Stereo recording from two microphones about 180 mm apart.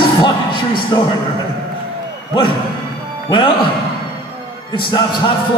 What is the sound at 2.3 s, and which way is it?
A man's voice, 25° left (ahead or behind).